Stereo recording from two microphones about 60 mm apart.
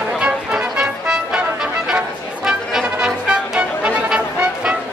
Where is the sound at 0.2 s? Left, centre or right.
Centre.